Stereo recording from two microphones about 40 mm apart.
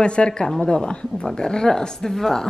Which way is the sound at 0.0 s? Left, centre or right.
Left.